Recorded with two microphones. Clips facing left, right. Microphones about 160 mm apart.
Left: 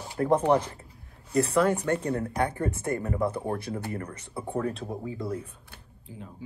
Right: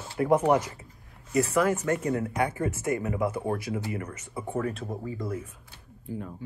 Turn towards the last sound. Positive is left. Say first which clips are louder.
# right 7 dB
turn(degrees=-55)  # may be behind; listen again after turning